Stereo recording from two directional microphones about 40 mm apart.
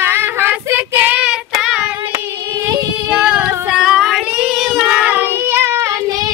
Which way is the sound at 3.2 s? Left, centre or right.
Right.